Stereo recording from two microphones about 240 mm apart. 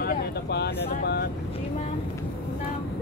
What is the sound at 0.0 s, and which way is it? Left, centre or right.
Vehicle, left.